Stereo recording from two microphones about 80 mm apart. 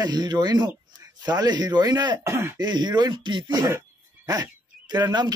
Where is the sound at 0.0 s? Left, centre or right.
Right.